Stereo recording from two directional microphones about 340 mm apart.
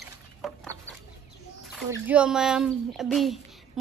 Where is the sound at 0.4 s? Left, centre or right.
Centre.